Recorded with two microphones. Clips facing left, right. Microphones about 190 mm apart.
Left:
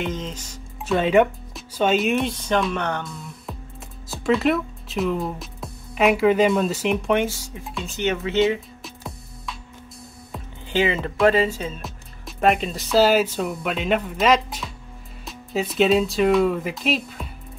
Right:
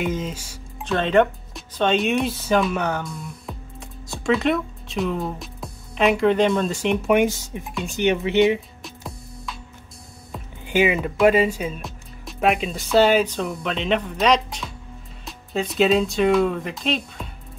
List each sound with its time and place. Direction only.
0.0 s speech: 10° right (ahead or behind)
0.8 s speech: 5° left (ahead or behind)
7.1 s speech: 15° right (ahead or behind)
8.8 s music: centre (ahead or behind)
10.7 s speech: 15° right (ahead or behind)
11.8 s speech: centre (ahead or behind)